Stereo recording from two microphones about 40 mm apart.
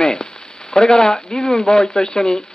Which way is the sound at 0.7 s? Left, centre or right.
Centre.